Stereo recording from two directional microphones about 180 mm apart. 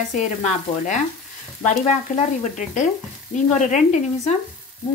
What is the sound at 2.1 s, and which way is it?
Speech, 45° left (ahead or behind).